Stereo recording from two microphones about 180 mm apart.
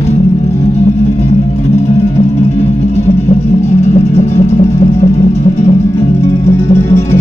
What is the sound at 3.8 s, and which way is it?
Music, 35° left (ahead or behind).